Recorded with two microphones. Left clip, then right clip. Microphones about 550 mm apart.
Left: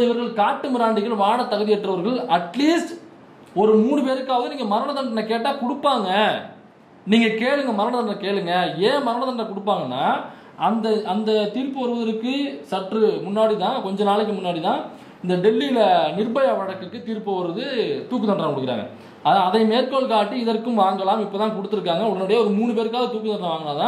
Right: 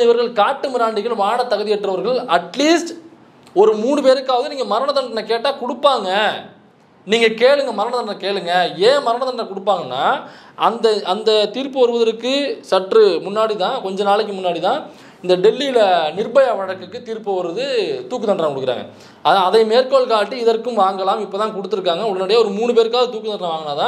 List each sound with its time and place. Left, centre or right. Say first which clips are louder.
0.1 s a man's voice: right 6 dB; right
10.6 s a man's voice: right 5 dB; right